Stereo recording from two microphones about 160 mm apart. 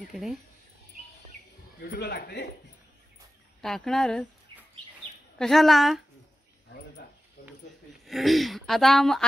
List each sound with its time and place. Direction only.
0.1 s speech: centre (ahead or behind)
1.8 s speech: 85° left
3.6 s speech: centre (ahead or behind)
5.4 s speech: centre (ahead or behind)
8.1 s speech: centre (ahead or behind)